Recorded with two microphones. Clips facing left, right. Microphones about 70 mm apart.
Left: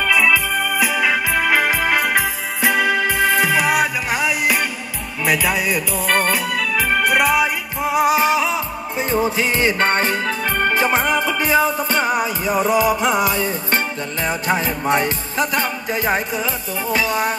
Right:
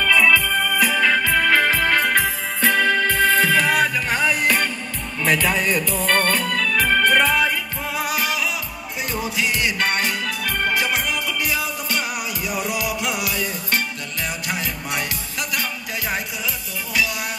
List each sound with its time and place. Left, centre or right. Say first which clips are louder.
0.0 s organ: even; centre
5.2 s music: left 1 dB; centre; by 17.4 s left